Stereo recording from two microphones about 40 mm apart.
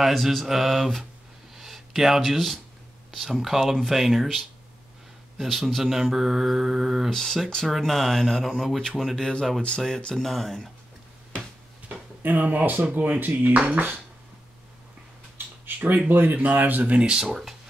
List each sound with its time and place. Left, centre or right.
0.0 s speech: centre
5.4 s speech: centre
5.9 s mantra: centre
7.1 s speech: centre
9.2 s speech: centre
12.2 s speech: right
15.3 s a sound: right
16.1 s speech: right
16.9 s mantra: right